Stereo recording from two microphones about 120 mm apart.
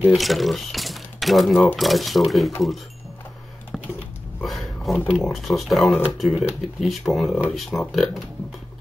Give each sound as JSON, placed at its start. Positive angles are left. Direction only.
{"t": 0.1, "sound": "speech", "side_deg": 0}
{"t": 4.4, "sound": "a sound", "side_deg": 0}
{"t": 4.8, "sound": "speech", "side_deg": 0}